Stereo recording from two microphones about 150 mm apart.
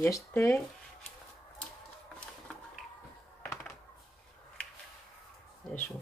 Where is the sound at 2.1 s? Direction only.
5° left (ahead or behind).